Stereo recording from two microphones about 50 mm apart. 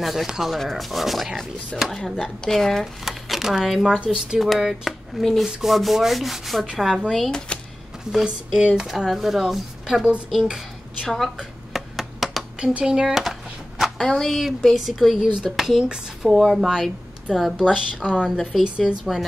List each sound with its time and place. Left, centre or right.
0.0 s speech: centre
1.9 s speech: centre
2.8 s speech: centre
4.4 s speech: centre
7.2 s speech: centre
8.1 s a woman's voice: centre
8.8 s speech: centre
11.3 s a sound: centre
12.5 s speech: centre
13.1 s a sound: centre
13.9 s a woman's voice: centre